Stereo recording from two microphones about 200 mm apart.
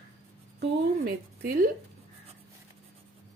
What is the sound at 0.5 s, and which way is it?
Speech, 45° right (ahead or behind).